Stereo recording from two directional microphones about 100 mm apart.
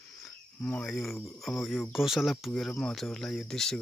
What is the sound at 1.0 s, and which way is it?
Speech, 25° left (ahead or behind).